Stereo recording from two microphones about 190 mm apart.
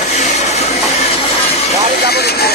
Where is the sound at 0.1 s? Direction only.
35° left (ahead or behind).